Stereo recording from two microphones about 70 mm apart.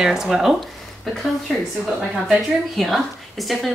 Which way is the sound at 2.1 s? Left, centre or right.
Centre.